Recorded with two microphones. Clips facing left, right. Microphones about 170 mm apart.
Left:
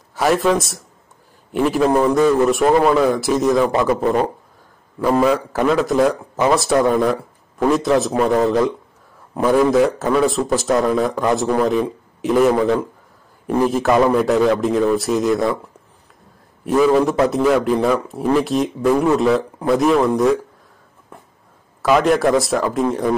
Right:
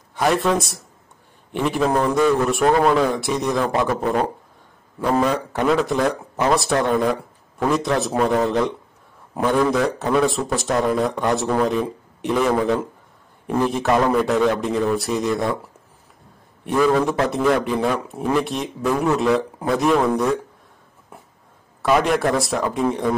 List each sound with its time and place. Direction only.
0.1 s a man's voice: 5° left (ahead or behind)
16.8 s a man's voice: 5° left (ahead or behind)
21.8 s a man's voice: centre (ahead or behind)